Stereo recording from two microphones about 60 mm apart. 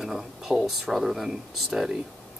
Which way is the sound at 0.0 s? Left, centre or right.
Centre.